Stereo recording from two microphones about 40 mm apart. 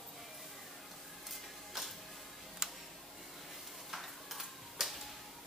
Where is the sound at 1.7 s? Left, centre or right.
Centre.